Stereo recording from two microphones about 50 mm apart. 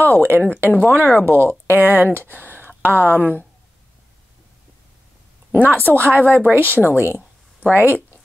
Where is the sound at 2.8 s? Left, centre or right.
Left.